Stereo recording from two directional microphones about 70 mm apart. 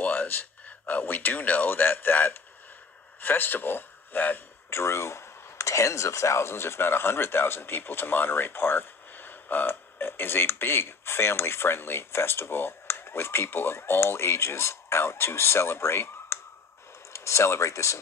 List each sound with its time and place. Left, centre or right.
0.0 s a man's voice: left
4.6 s speech: left